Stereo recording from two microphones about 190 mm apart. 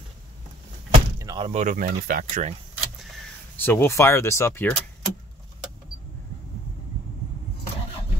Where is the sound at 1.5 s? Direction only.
40° right (ahead or behind).